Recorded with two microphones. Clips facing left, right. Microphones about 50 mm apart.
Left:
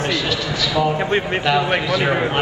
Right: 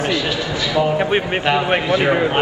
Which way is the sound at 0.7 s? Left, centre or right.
Right.